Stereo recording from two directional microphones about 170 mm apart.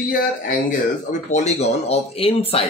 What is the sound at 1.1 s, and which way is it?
Speech, 45° left (ahead or behind).